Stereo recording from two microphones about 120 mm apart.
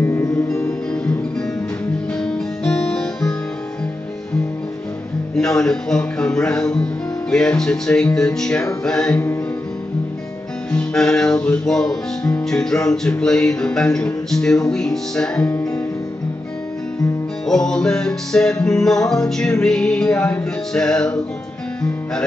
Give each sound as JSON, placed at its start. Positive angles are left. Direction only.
{"t": 0.0, "sound": "music", "side_deg": 20}
{"t": 2.1, "sound": "guitar", "side_deg": 5}
{"t": 5.3, "sound": "music", "side_deg": 5}
{"t": 10.7, "sound": "music", "side_deg": 5}
{"t": 17.5, "sound": "music", "side_deg": 5}